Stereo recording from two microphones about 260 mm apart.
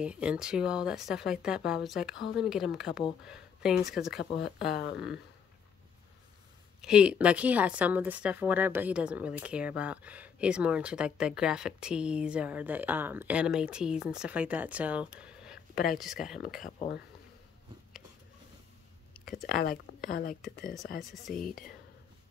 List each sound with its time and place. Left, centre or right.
0.0 s speech: centre
6.8 s speech: centre
16.3 s speech: left
19.4 s speech: left
21.0 s speech: centre